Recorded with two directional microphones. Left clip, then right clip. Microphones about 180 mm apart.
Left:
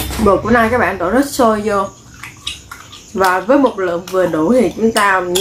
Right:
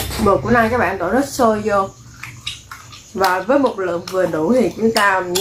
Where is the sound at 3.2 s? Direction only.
10° left (ahead or behind).